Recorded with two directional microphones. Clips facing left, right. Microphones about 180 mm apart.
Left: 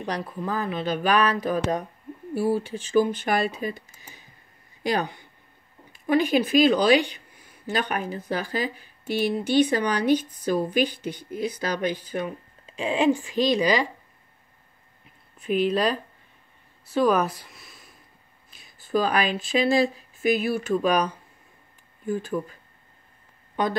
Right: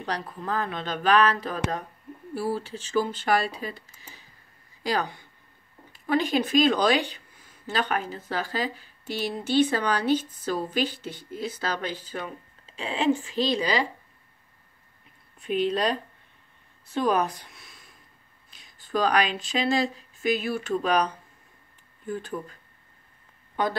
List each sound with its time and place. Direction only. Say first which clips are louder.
0.1 s speech: left 1 dB; 10° left (ahead or behind)
6.0 s speech: left 3 dB; 10° left (ahead or behind)
15.3 s speech: left 2 dB; 5° left (ahead or behind)
17.2 s speech: left 1 dB; 5° left (ahead or behind)